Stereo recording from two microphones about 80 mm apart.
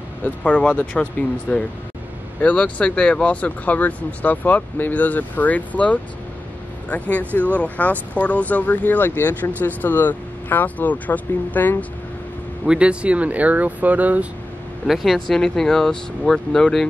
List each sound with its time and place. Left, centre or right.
0.2 s speech: centre
12.6 s speech: centre
14.9 s speech: centre